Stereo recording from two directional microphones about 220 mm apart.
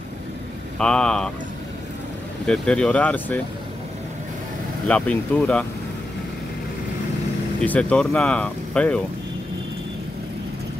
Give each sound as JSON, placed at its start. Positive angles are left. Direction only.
{"t": 0.7, "sound": "speech", "side_deg": 5}
{"t": 2.4, "sound": "speech", "side_deg": 5}
{"t": 4.8, "sound": "speech", "side_deg": 5}
{"t": 7.6, "sound": "speech", "side_deg": 5}